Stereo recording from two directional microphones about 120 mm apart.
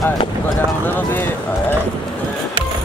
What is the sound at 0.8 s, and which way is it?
Speech, 15° left (ahead or behind).